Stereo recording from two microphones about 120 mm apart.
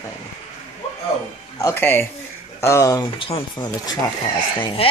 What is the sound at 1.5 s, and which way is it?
Speech, 20° left (ahead or behind).